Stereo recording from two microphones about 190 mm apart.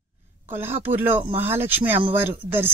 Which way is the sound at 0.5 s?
10° right (ahead or behind).